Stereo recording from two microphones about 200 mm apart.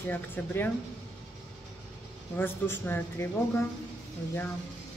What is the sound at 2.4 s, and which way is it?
Speech, 10° left (ahead or behind).